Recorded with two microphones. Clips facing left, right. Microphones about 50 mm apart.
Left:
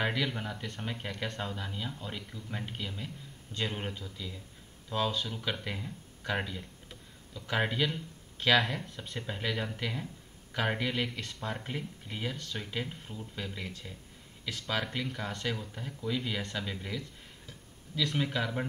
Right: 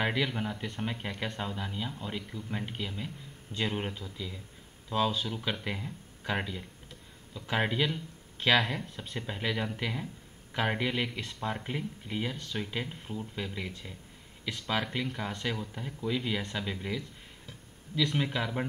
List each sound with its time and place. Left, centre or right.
0.0 s speech: centre
12.4 s speech: centre
12.7 s speech: centre